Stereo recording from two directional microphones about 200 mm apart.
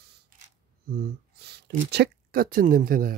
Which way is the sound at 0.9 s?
50° right (ahead or behind).